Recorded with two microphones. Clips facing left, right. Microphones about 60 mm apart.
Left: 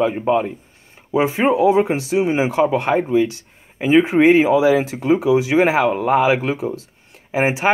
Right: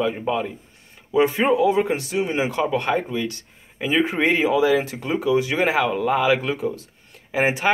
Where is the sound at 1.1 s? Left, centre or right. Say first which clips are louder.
Left 2 dB; centre.